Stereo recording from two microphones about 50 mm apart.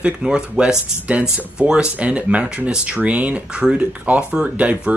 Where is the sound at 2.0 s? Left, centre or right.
Right.